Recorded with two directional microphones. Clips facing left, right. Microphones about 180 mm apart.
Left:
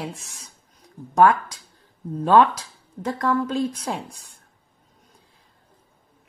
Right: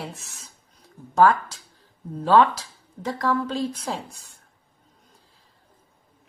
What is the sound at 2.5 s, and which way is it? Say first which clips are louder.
Dishes: left 2 dB; 5° right (ahead or behind).